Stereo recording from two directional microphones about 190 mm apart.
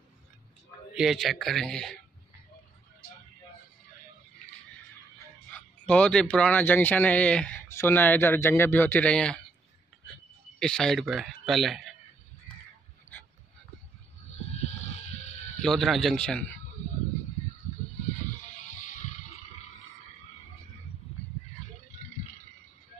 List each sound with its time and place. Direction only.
0.9 s speech: centre (ahead or behind)
5.9 s speech: 5° left (ahead or behind)
10.6 s speech: 5° left (ahead or behind)
15.6 s speech: centre (ahead or behind)
18.6 s a sound: 40° left (ahead or behind)